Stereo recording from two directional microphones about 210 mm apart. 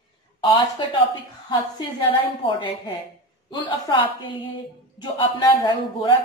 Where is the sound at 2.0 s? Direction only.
25° left (ahead or behind).